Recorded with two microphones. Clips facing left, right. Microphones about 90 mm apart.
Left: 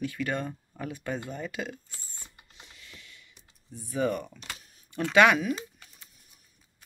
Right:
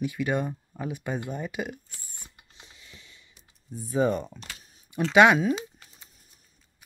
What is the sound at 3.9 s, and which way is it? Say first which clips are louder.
Speech: right 4 dB; 25° right (ahead or behind).